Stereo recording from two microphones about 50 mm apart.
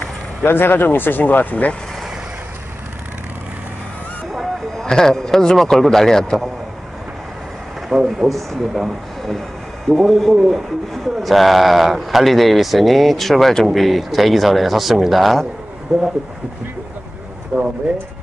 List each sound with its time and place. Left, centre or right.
0.5 s speech: left
4.3 s speech: centre
7.9 s speech: centre
8.3 s speech: centre
10.3 s speech: centre